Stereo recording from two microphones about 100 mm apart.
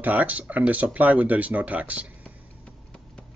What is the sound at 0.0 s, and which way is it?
Speech, 15° right (ahead or behind).